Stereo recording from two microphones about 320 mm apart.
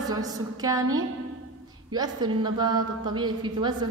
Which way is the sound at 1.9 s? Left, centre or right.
Centre.